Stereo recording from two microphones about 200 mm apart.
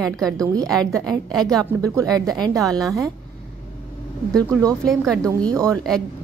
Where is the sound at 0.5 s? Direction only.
20° right (ahead or behind).